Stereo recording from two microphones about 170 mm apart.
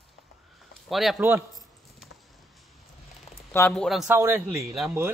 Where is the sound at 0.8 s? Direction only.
Centre (ahead or behind).